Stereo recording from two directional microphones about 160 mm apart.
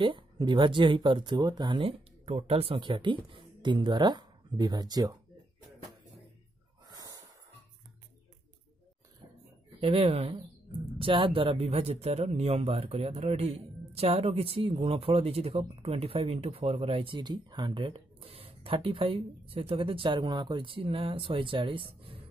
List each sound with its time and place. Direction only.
0.0 s speech: 30° right (ahead or behind)
6.9 s a sound: 20° right (ahead or behind)
9.8 s speech: 35° right (ahead or behind)